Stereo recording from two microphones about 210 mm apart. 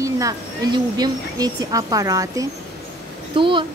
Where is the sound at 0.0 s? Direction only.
15° right (ahead or behind).